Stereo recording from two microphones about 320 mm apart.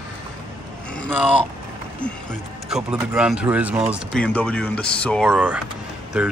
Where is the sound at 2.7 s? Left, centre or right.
Centre.